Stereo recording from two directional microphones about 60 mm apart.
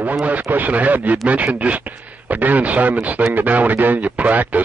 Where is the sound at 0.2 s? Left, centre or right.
Right.